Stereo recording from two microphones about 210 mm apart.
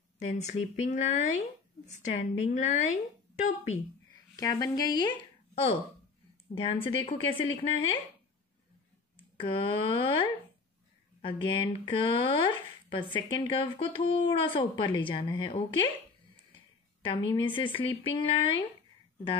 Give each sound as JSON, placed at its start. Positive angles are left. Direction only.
{"t": 0.2, "sound": "a woman's voice", "side_deg": 35}
{"t": 4.4, "sound": "speech", "side_deg": 15}
{"t": 6.5, "sound": "speech", "side_deg": 25}
{"t": 9.4, "sound": "speech", "side_deg": 25}
{"t": 17.0, "sound": "speech", "side_deg": 25}